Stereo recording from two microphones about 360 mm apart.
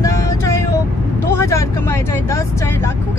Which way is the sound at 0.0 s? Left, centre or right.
Centre.